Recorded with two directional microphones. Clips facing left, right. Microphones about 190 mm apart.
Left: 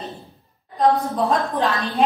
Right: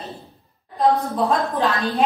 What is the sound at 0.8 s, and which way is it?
A woman's voice, centre (ahead or behind).